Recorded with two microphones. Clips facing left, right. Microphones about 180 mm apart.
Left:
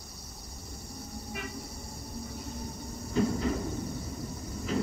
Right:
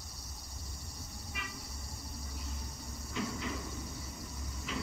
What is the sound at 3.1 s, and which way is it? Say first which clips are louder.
Train: left 10 dB; 40° left (ahead or behind).